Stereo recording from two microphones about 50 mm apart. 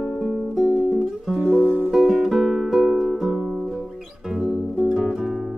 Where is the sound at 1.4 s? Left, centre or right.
Right.